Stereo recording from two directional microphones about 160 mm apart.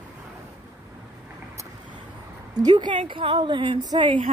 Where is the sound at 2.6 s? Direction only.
25° right (ahead or behind).